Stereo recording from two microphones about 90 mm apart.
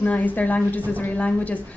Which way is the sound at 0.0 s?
15° left (ahead or behind).